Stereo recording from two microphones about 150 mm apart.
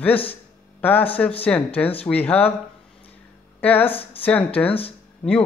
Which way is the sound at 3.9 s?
40° left (ahead or behind).